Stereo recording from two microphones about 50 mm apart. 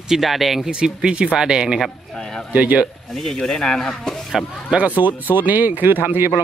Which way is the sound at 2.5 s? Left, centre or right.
Right.